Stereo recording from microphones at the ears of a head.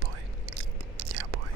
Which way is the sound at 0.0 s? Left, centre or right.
Right.